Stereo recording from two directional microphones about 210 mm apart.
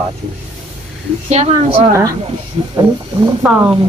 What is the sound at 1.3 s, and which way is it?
A man's voice, 30° right (ahead or behind).